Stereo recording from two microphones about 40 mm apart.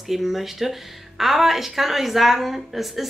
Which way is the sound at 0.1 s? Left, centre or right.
Centre.